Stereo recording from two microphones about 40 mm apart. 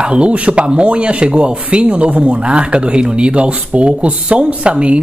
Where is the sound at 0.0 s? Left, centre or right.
Right.